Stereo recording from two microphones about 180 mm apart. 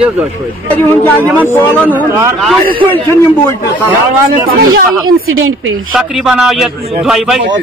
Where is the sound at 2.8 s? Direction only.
30° right (ahead or behind).